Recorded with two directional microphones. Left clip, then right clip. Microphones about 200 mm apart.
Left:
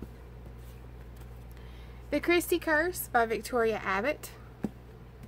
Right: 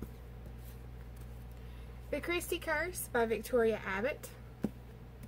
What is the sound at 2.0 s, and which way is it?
A woman's voice, 45° left (ahead or behind).